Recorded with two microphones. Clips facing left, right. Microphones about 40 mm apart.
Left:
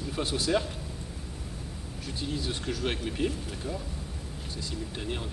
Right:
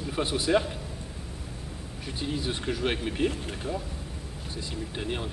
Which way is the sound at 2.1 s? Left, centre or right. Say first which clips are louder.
Right 2 dB; centre.